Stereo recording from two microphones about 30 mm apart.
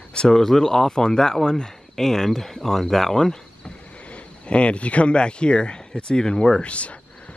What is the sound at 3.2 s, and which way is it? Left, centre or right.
Cricket, left.